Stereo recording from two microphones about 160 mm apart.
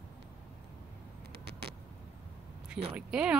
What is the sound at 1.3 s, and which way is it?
Vehicle, 90° right.